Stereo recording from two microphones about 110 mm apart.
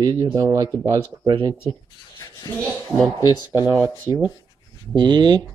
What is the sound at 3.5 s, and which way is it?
Speech, 25° right (ahead or behind).